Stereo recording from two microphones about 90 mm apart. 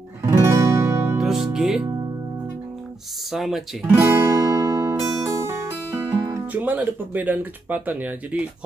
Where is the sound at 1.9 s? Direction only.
45° right (ahead or behind).